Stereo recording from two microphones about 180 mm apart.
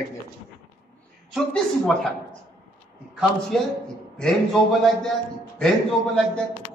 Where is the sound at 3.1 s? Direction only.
Centre (ahead or behind).